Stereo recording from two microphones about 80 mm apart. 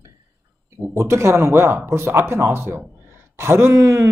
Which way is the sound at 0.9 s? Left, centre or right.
Right.